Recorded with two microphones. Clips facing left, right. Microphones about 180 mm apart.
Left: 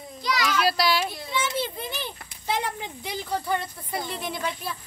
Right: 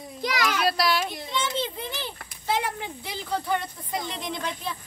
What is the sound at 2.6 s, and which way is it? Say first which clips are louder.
Speech: even; 15° left (ahead or behind).